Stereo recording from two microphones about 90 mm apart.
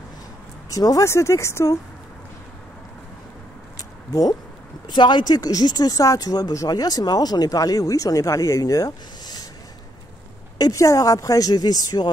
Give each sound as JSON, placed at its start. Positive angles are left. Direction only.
{"t": 0.7, "sound": "speech", "side_deg": 40}
{"t": 3.7, "sound": "a sound", "side_deg": 40}
{"t": 4.8, "sound": "speech", "side_deg": 55}
{"t": 10.6, "sound": "speech", "side_deg": 35}